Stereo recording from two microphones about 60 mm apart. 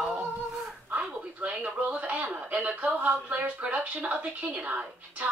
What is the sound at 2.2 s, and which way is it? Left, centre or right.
Radio, right.